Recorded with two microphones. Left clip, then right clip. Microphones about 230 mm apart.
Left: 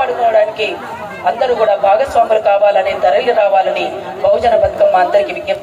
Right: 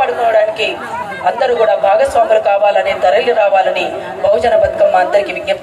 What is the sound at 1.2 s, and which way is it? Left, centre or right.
A man's voice, right.